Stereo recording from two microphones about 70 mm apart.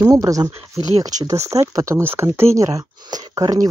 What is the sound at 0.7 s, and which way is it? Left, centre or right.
Speech, right.